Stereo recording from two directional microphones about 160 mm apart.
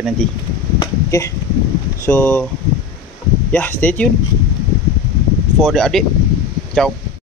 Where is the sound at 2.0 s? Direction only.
15° left (ahead or behind).